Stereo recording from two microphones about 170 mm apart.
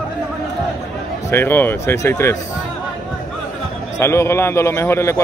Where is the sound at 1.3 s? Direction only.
10° left (ahead or behind).